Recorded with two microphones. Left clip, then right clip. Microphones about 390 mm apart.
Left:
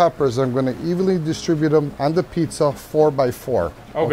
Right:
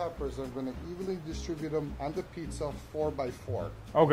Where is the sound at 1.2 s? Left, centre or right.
Left.